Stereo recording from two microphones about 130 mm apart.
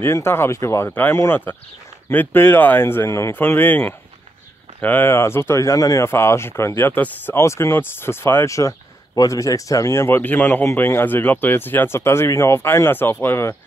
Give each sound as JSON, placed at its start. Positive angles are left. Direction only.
{"t": 0.0, "sound": "speech", "side_deg": 20}